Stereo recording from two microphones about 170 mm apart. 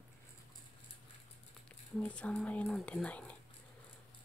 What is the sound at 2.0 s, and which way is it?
Speech, 5° left (ahead or behind).